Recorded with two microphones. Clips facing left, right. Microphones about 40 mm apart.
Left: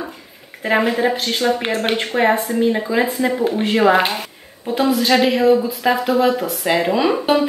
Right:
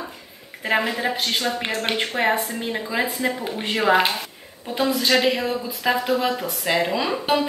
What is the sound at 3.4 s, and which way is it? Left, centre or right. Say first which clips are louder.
Speech: left 7 dB; centre.